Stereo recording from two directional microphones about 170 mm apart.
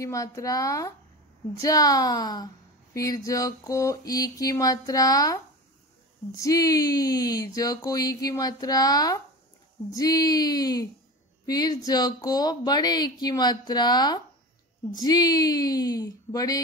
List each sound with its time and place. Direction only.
0.0 s a woman's voice: 20° left (ahead or behind)